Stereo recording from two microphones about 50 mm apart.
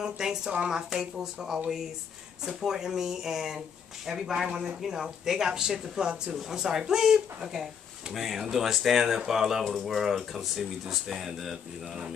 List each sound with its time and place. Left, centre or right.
0.0 s speech: centre
4.5 s speech: centre
4.8 s speech: centre